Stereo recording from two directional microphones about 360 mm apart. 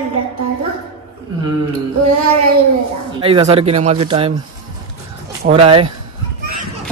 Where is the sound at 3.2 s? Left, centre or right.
Centre.